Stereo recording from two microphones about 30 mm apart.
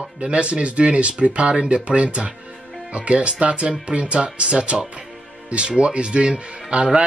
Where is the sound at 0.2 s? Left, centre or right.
Right.